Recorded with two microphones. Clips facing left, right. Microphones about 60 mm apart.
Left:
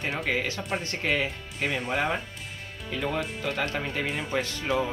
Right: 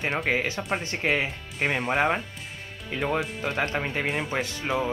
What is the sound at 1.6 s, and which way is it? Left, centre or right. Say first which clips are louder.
Speech: right 4 dB; right.